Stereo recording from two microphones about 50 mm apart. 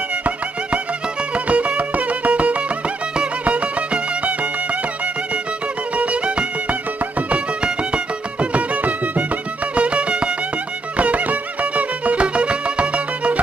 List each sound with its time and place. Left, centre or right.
1.3 s music: right
5.9 s music: right